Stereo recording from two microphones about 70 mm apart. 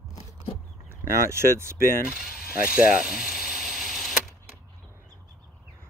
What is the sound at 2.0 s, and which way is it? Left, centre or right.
Mechanisms, centre.